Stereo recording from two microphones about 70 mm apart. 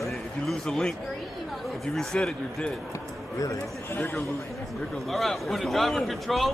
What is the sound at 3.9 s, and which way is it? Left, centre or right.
Speech, left.